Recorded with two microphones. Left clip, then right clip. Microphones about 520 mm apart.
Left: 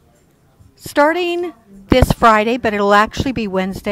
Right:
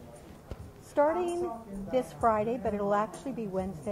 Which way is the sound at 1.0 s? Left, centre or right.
Left.